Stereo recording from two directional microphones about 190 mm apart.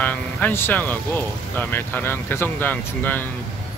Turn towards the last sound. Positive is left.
turn(degrees=10)  # may be behind; listen again after turning